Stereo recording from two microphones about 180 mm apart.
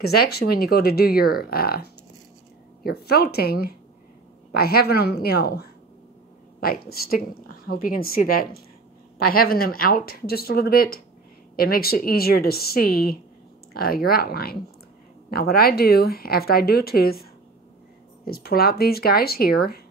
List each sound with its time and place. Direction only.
0.0 s a woman's voice: 60° left (ahead or behind)